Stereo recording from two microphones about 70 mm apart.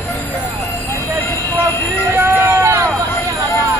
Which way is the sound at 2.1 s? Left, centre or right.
Right.